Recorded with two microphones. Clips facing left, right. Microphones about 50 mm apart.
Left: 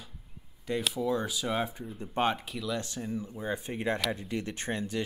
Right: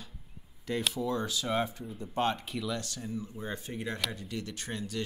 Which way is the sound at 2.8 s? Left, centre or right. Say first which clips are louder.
Left 3 dB; left.